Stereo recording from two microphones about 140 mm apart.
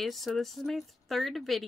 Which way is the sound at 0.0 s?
Centre (ahead or behind).